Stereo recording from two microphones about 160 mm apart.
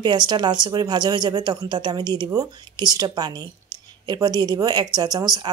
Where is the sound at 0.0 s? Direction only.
25° right (ahead or behind).